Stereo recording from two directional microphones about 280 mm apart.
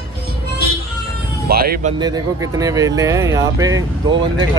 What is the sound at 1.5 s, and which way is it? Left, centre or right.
Speech, right.